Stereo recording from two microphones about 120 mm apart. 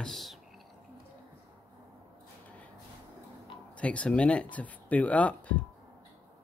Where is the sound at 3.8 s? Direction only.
10° left (ahead or behind).